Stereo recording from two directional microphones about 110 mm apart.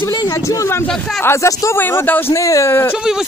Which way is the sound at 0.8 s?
5° left (ahead or behind).